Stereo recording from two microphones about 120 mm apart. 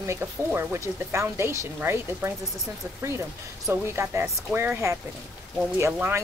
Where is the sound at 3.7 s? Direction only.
20° right (ahead or behind).